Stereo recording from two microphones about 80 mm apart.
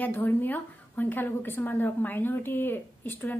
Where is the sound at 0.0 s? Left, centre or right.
Left.